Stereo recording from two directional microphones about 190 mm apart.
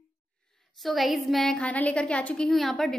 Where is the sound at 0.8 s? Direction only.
Centre (ahead or behind).